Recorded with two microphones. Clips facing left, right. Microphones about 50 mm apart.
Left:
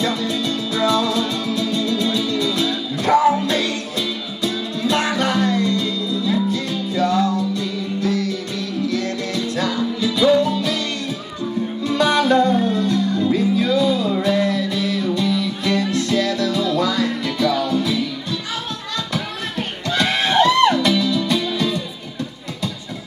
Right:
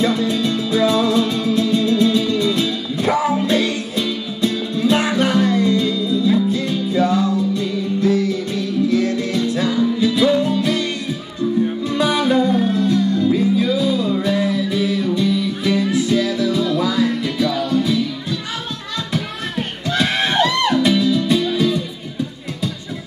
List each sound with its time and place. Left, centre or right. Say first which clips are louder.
0.0 s music: right 4 dB; centre
11.8 s music: left 1 dB; centre
19.9 s music: even; centre